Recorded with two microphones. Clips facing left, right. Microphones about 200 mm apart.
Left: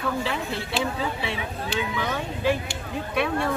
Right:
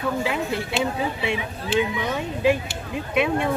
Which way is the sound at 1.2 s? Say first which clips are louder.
Right 3 dB; 20° right (ahead or behind).